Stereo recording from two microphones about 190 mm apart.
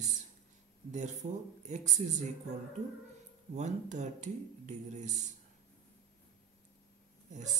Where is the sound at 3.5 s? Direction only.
40° right (ahead or behind).